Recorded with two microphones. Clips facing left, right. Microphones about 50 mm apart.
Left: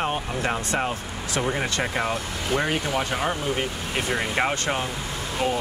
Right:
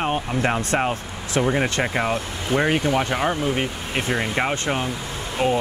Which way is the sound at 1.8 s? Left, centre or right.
Centre.